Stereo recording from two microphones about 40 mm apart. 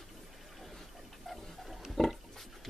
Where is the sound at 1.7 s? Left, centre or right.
Centre.